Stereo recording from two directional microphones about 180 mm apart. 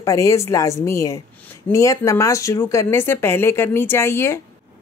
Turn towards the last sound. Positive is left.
turn(degrees=15)  # may be behind; listen again after turning